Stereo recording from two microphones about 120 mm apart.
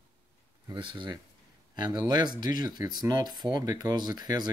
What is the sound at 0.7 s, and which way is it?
Speech, 40° right (ahead or behind).